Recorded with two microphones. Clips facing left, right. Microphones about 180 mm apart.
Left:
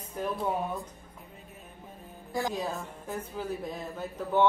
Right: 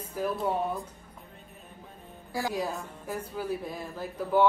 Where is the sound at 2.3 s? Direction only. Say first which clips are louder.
Even; 5° right (ahead or behind).